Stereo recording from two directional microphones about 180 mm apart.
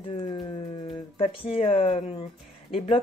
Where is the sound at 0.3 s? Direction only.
30° left (ahead or behind).